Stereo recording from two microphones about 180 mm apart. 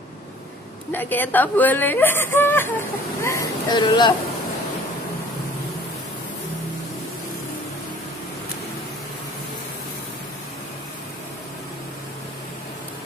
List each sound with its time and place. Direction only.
0.9 s speech: 10° left (ahead or behind)